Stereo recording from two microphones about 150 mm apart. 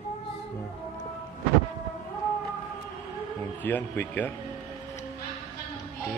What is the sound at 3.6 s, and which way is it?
Speech, 15° left (ahead or behind).